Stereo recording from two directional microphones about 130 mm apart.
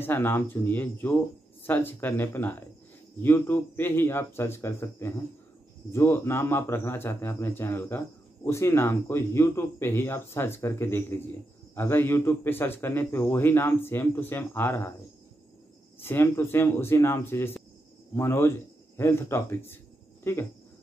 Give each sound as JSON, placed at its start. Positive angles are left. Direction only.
{"t": 0.0, "sound": "a man's voice", "side_deg": 15}
{"t": 16.0, "sound": "a man's voice", "side_deg": 15}